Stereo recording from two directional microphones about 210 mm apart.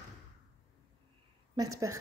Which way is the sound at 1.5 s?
15° right (ahead or behind).